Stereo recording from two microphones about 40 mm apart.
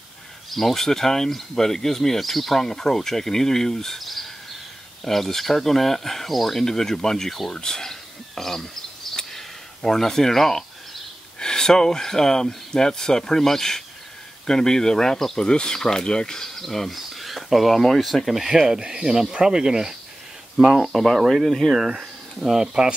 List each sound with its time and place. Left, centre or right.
0.5 s speech: centre
9.1 s a sound: centre
11.3 s speech: centre
15.4 s speech: left
16.4 s speech: centre
18.4 s speech: centre
20.9 s speech: centre
21.7 s speech: centre